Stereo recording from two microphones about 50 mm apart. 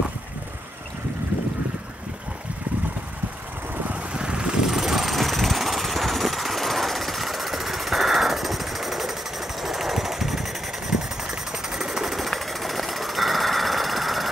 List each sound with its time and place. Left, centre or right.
3.8 s vehicle: right
4.6 s vehicle: centre